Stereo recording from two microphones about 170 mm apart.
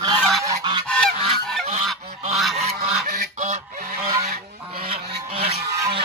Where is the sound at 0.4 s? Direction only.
20° right (ahead or behind).